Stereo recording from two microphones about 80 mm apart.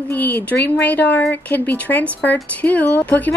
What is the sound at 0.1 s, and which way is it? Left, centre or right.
A woman's voice, left.